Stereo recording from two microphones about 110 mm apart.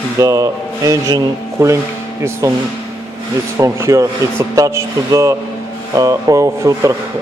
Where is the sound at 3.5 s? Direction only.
25° right (ahead or behind).